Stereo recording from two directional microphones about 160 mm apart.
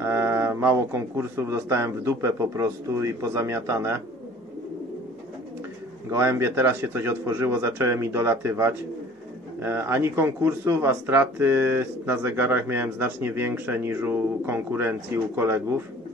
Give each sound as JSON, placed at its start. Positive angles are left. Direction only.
{"t": 0.0, "sound": "speech", "side_deg": -15}
{"t": 6.0, "sound": "speech", "side_deg": -15}